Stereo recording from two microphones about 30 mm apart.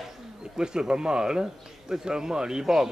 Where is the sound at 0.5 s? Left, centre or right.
Right.